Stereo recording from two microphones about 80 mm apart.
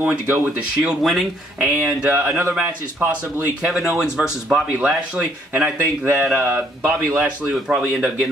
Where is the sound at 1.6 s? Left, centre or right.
Right.